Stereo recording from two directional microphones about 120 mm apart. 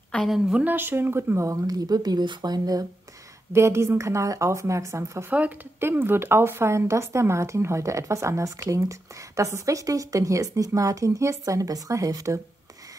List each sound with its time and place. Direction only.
0.1 s a woman's voice: centre (ahead or behind); by 2.9 s 30° right (ahead or behind)
3.5 s a woman's voice: 20° right (ahead or behind)